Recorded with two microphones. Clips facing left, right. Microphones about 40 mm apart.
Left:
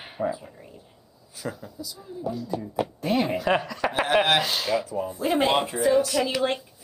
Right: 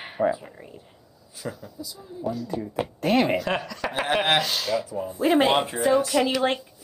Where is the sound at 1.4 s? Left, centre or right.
Centre.